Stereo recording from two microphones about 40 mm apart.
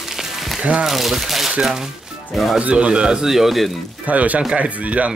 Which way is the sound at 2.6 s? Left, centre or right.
Right.